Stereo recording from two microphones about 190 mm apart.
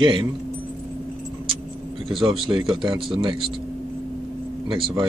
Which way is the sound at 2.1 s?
25° right (ahead or behind).